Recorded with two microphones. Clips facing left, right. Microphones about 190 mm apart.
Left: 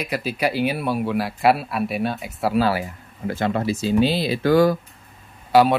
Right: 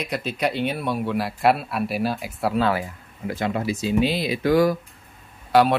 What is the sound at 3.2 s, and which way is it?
Speech, 35° left (ahead or behind).